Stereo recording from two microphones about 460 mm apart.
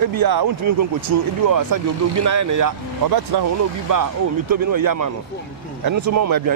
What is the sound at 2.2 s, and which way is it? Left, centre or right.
Speech, right.